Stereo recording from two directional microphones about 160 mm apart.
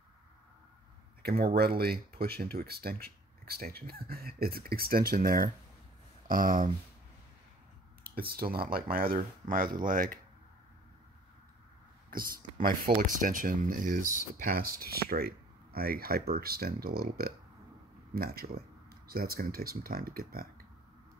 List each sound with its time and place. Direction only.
1.4 s speech: 75° right (ahead or behind); by 6.7 s 60° right (ahead or behind)
8.0 s speech: 70° right (ahead or behind)
12.1 s speech: 65° right (ahead or behind)